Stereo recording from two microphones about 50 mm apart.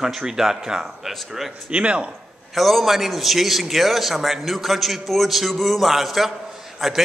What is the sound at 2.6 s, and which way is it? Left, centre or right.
Speech, centre.